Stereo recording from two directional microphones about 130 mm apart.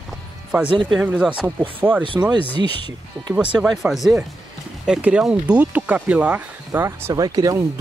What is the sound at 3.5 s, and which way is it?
Speech, centre (ahead or behind).